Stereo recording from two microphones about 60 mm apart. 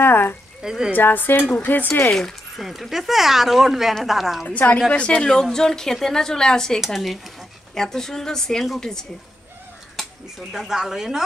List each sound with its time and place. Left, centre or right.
0.0 s speech: left
0.6 s speech: centre
0.9 s speech: left
2.1 s speech: centre
4.5 s speech: left
4.7 s a woman's voice: centre
5.3 s a woman's voice: centre
10.5 s speech: centre